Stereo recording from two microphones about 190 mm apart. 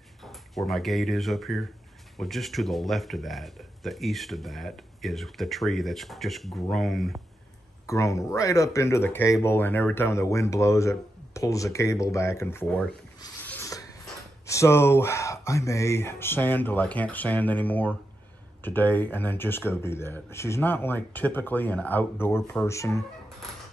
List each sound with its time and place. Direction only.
0.2 s speech: centre (ahead or behind)
7.8 s speech: 15° left (ahead or behind)
13.4 s a sound: 10° left (ahead or behind)
14.4 s speech: 15° left (ahead or behind)